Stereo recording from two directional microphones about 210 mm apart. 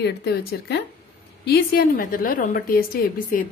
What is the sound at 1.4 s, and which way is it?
A woman's voice, 45° left (ahead or behind).